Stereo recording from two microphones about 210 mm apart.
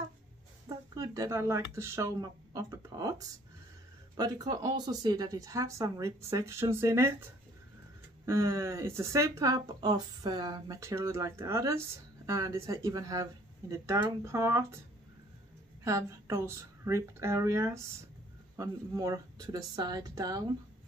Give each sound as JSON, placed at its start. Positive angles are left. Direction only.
{"t": 0.7, "sound": "speech", "side_deg": -15}
{"t": 8.3, "sound": "speech", "side_deg": -15}
{"t": 15.8, "sound": "speech", "side_deg": -15}